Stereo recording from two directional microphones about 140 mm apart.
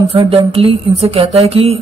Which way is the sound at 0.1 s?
40° right (ahead or behind).